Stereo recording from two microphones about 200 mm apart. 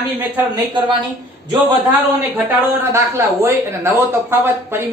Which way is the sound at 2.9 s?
15° right (ahead or behind).